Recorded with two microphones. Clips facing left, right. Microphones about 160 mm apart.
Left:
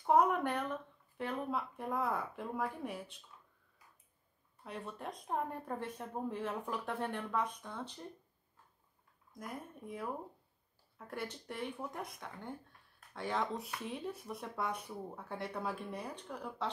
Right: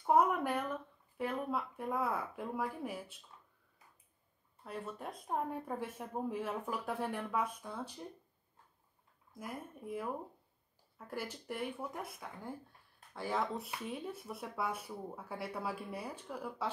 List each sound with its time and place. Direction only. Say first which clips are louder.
0.0 s speech: even; 5° right (ahead or behind)
4.6 s speech: right 1 dB; 5° right (ahead or behind)
9.3 s speech: right 1 dB; 5° right (ahead or behind)